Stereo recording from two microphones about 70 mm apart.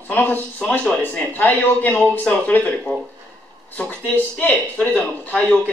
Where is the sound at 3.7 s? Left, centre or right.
Left.